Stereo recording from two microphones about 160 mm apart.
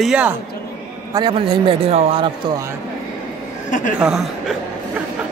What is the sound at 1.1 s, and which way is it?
A man's voice, 30° right (ahead or behind).